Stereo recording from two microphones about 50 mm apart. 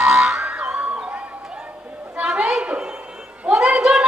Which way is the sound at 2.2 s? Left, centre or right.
Centre.